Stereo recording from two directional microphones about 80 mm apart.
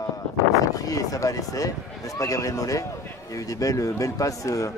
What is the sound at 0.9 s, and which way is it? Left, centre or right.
A man's voice, left.